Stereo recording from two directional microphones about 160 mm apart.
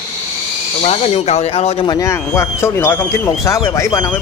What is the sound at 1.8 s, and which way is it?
Speech, 20° left (ahead or behind).